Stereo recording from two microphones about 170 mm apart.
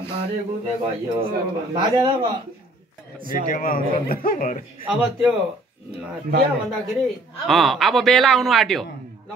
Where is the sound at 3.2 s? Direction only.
55° left (ahead or behind).